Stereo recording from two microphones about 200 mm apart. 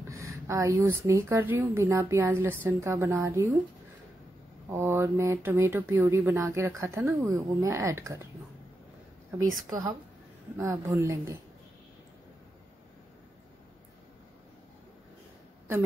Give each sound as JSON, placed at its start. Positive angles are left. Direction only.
{"t": 0.1, "sound": "a woman's voice", "side_deg": -15}
{"t": 4.6, "sound": "a woman's voice", "side_deg": -10}
{"t": 9.7, "sound": "a woman's voice", "side_deg": -15}